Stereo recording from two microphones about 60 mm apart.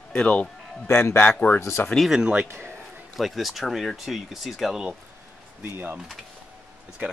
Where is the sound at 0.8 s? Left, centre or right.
Left.